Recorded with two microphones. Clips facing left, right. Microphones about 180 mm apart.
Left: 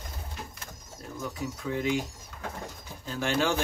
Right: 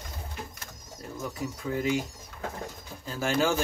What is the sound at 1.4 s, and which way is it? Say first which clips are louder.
Speech: right 1 dB; centre (ahead or behind).